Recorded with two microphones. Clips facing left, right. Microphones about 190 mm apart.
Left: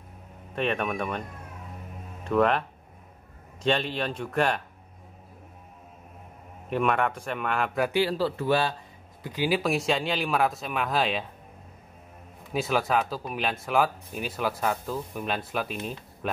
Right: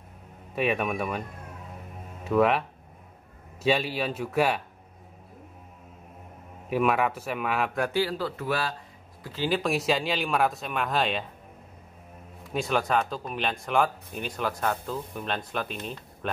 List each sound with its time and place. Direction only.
0.6 s speech: 5° right (ahead or behind)
2.2 s speech: 5° right (ahead or behind)
3.6 s speech: 5° right (ahead or behind)
6.7 s speech: 5° right (ahead or behind)
7.9 s speech: 25° left (ahead or behind)
9.2 s speech: 15° left (ahead or behind)
9.6 s speech: centre (ahead or behind)
12.5 s speech: centre (ahead or behind)